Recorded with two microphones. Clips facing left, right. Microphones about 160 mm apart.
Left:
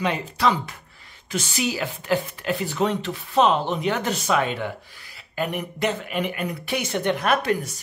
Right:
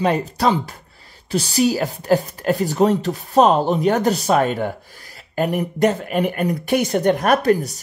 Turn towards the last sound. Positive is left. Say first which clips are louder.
# right 6 dB
turn(degrees=-35)  # may be behind; listen again after turning